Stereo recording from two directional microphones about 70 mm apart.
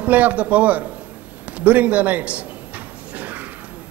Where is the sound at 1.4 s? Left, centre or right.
Right.